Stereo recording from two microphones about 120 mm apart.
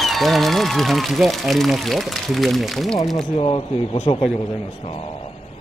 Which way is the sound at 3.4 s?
50° left (ahead or behind).